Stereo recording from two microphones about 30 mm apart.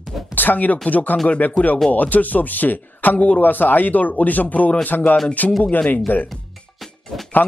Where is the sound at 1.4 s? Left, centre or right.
Left.